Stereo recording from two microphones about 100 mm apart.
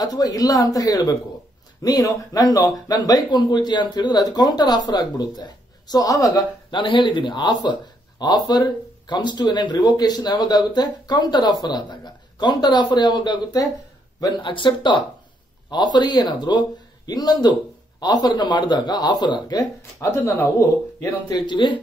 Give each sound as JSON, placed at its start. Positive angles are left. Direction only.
{"t": 0.0, "sound": "speech", "side_deg": 40}
{"t": 6.7, "sound": "speech", "side_deg": 55}
{"t": 14.4, "sound": "speech", "side_deg": 55}
{"t": 20.1, "sound": "speech", "side_deg": 25}
{"t": 21.3, "sound": "speech", "side_deg": 50}